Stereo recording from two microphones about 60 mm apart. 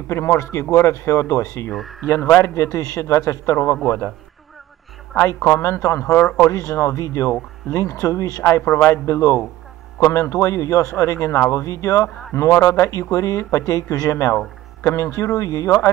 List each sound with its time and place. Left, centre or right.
0.1 s speech: left
1.7 s speech: centre
2.0 s speech: left
3.0 s speech: left
3.5 s a man's voice: left
5.4 s speech: left
8.5 s speech: left
11.6 s speech: left
14.8 s speech: left